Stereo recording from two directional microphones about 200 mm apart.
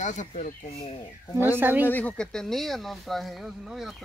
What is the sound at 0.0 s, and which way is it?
Speech, 40° left (ahead or behind).